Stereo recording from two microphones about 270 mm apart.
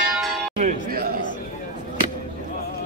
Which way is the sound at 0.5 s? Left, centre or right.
Right.